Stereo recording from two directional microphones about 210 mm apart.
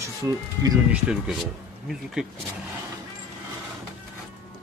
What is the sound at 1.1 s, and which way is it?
Speech, 5° right (ahead or behind).